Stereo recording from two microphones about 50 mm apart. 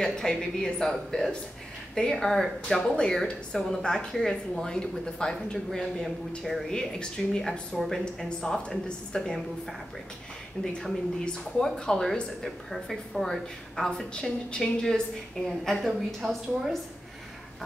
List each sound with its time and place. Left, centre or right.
0.0 s speech: centre
7.7 s a woman's voice: centre
8.3 s speech: centre